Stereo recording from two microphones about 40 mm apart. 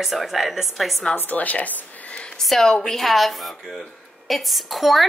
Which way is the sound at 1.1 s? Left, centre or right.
Left.